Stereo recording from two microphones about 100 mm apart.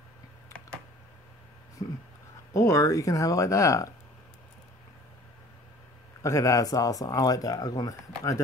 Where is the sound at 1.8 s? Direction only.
45° left (ahead or behind).